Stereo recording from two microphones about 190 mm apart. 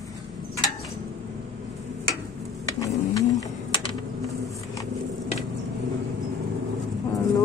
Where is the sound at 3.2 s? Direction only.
25° left (ahead or behind).